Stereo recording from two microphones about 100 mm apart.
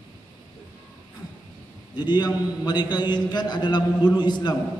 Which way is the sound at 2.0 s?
45° left (ahead or behind).